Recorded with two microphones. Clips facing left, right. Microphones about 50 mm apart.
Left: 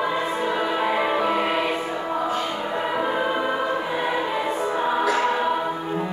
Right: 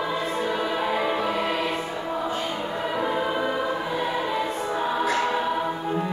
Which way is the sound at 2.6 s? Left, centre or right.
Left.